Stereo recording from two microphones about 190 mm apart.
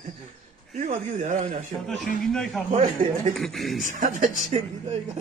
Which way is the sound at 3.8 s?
45° right (ahead or behind).